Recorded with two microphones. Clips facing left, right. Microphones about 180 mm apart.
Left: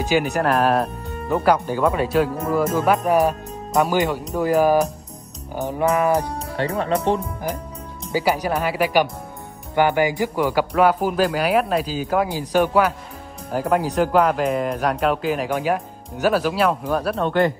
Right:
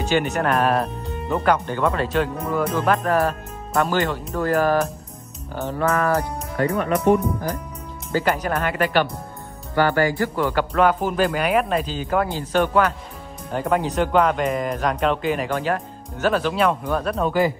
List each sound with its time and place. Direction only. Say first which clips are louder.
0.1 s speech: left 1 dB; centre (ahead or behind)
3.1 s speech: left 3 dB; 15° left (ahead or behind)
6.5 s speech: right 1 dB; 30° left (ahead or behind)
8.1 s speech: left 1 dB; 10° left (ahead or behind)